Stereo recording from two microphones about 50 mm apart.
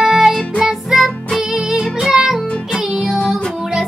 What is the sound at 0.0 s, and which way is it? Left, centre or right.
Music, centre.